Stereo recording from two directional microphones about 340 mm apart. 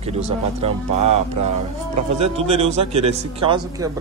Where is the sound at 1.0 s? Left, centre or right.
Right.